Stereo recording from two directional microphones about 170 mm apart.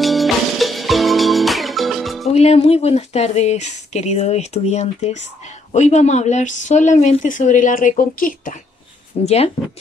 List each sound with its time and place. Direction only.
0.0 s music: centre (ahead or behind)
2.2 s speech: 40° left (ahead or behind)
9.2 s speech: 40° left (ahead or behind)